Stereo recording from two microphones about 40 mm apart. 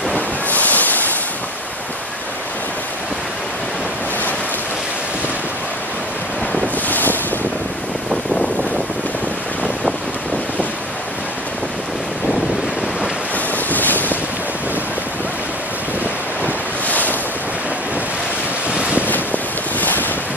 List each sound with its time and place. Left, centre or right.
0.1 s a sound: left
6.9 s ocean: left
13.7 s boat: left
16.8 s waves: left
18.7 s wind noise: right
19.0 s boat: left